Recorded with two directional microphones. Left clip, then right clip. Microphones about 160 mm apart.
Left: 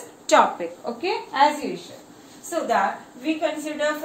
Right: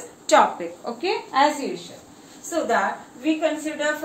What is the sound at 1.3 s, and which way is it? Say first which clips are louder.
Speech: even; 15° right (ahead or behind).